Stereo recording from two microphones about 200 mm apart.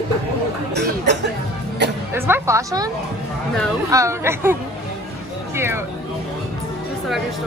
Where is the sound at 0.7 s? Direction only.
60° right (ahead or behind).